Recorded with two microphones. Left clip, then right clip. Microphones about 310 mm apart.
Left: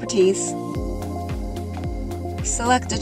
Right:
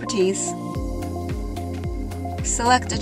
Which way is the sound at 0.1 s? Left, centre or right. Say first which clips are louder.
Left 3 dB; right.